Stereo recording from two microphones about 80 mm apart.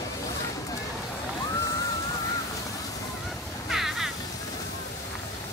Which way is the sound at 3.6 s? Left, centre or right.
Centre.